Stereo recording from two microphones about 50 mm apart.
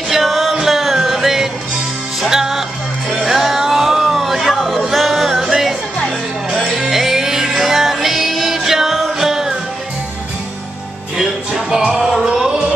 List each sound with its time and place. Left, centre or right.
0.1 s music: centre
11.1 s music: centre